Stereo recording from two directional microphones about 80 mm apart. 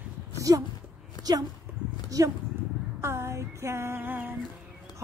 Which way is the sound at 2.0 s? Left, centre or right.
Right.